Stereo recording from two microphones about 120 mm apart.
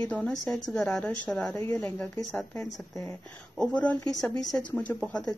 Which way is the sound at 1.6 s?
20° left (ahead or behind).